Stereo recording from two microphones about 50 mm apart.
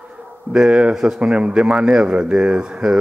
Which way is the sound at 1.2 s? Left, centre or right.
Right.